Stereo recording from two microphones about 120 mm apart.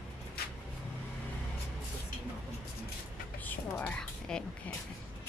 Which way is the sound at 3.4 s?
15° left (ahead or behind).